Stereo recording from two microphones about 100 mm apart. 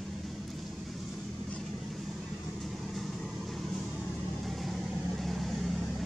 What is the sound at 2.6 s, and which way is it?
Vehicle, centre (ahead or behind).